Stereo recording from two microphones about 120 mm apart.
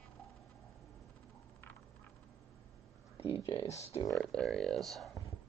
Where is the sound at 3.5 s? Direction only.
50° left (ahead or behind).